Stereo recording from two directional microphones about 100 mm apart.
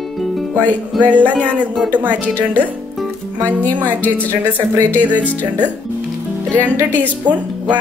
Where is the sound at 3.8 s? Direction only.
20° right (ahead or behind).